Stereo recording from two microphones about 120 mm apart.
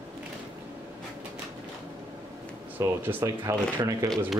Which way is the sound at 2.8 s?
25° right (ahead or behind).